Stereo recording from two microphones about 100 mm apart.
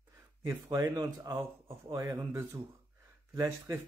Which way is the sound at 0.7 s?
40° right (ahead or behind).